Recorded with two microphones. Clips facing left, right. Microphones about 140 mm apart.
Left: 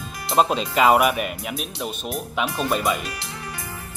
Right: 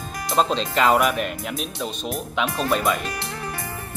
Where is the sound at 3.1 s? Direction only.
50° right (ahead or behind).